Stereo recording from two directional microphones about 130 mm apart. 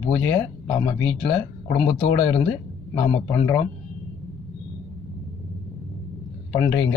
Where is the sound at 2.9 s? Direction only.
25° left (ahead or behind).